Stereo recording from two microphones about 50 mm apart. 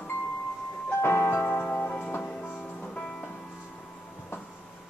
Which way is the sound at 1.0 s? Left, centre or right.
Left.